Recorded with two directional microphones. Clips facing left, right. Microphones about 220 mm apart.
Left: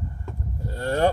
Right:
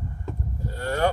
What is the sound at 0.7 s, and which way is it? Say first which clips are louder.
Speech: left 3 dB; 30° left (ahead or behind).